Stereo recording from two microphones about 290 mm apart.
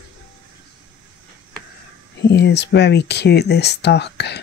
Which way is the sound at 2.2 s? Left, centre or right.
Left.